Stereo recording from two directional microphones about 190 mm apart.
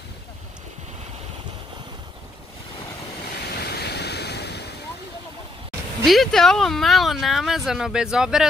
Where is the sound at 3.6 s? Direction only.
60° left (ahead or behind).